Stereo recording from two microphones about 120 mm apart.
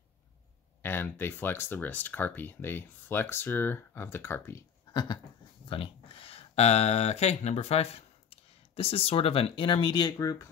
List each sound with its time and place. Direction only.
0.8 s speech: 15° left (ahead or behind)
4.9 s a sound: 40° left (ahead or behind)
5.7 s speech: 50° left (ahead or behind); by 10.5 s 30° left (ahead or behind)